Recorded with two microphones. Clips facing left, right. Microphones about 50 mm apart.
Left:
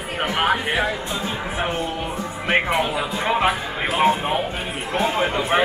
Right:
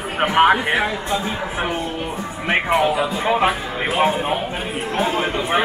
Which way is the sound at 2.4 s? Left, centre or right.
Centre.